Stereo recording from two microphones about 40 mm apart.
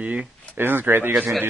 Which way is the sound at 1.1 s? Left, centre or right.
Centre.